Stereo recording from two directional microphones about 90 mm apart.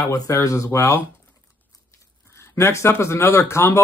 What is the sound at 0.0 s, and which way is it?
Speech, 40° left (ahead or behind).